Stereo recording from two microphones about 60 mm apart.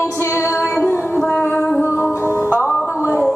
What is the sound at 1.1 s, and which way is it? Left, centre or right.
Music, left.